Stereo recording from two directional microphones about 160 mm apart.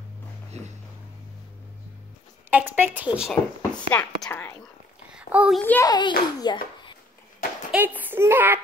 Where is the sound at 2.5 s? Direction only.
10° right (ahead or behind); by 4.5 s 10° left (ahead or behind).